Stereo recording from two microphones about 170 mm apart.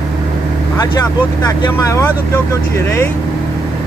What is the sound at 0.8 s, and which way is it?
Speech, 20° left (ahead or behind).